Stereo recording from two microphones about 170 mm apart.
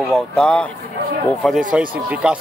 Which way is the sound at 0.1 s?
5° left (ahead or behind).